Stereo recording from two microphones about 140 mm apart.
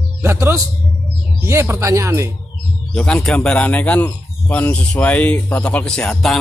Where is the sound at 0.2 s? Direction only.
20° right (ahead or behind).